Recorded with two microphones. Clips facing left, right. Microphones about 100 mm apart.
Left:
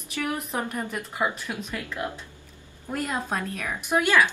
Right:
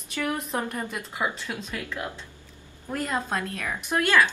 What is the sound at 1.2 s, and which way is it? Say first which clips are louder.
Speech: left 2 dB; 15° left (ahead or behind).